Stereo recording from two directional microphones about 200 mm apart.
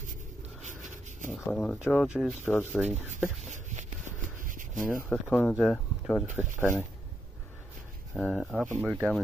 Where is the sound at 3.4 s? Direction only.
35° right (ahead or behind).